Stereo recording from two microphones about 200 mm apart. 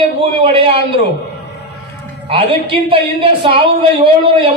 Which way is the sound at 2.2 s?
25° right (ahead or behind).